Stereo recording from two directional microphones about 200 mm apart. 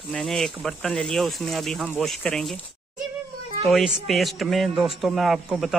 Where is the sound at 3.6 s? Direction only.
Centre (ahead or behind).